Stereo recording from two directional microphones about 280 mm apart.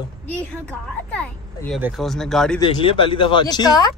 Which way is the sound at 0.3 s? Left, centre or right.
Centre.